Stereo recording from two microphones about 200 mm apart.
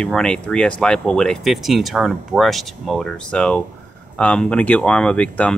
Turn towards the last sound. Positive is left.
turn(degrees=5)  # may be behind; listen again after turning